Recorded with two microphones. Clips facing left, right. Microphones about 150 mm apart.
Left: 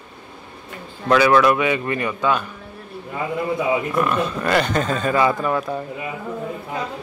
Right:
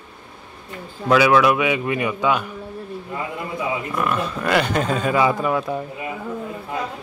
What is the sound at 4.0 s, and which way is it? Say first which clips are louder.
Speech: left 2 dB; 5° right (ahead or behind).